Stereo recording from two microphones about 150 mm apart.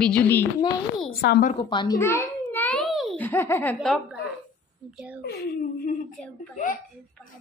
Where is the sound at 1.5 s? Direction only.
30° left (ahead or behind).